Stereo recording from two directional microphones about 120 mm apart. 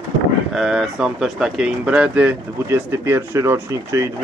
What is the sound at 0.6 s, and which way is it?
Speech, 5° right (ahead or behind).